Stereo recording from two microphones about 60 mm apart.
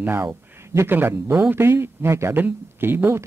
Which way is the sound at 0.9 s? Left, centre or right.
Right.